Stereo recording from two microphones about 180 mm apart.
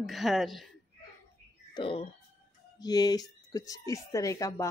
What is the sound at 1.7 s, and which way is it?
Speech, 30° left (ahead or behind).